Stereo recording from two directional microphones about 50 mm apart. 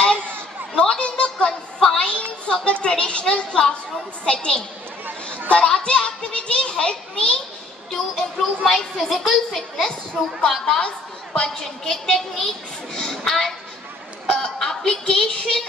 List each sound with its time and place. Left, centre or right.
0.7 s a sound: left
2.4 s a woman's voice: left
7.9 s a woman's voice: centre
14.2 s chuckle: centre
15.0 s a woman's voice: centre